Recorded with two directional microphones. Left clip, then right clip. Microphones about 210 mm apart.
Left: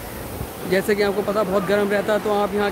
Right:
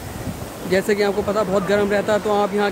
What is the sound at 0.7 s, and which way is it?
Speech, 15° right (ahead or behind).